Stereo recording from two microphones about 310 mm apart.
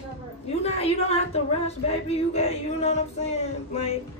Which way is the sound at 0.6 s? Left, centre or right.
Centre.